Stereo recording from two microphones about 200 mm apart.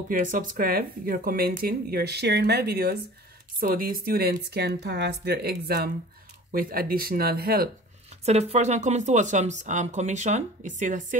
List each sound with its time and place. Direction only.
0.1 s speech: 40° right (ahead or behind)
8.3 s speech: 35° right (ahead or behind)